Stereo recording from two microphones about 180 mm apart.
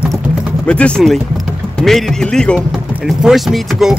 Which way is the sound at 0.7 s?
5° left (ahead or behind).